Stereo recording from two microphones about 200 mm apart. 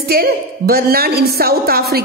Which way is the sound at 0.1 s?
50° right (ahead or behind).